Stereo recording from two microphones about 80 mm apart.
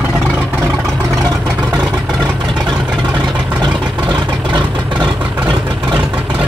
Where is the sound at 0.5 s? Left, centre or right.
Right.